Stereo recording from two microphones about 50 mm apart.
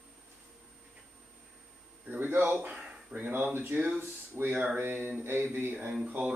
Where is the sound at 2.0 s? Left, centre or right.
Right.